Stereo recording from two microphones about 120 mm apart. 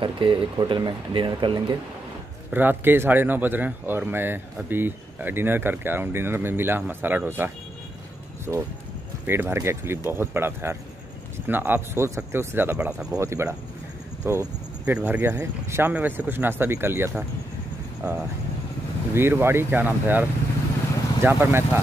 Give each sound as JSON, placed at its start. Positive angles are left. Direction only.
{"t": 0.0, "sound": "speech", "side_deg": -45}
{"t": 2.5, "sound": "speech", "side_deg": -15}
{"t": 9.2, "sound": "speech", "side_deg": -20}
{"t": 13.2, "sound": "speech", "side_deg": -25}
{"t": 14.2, "sound": "a sound", "side_deg": -20}
{"t": 15.0, "sound": "speech", "side_deg": -15}